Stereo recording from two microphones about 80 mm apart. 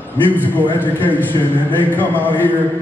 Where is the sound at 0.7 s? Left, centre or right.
Left.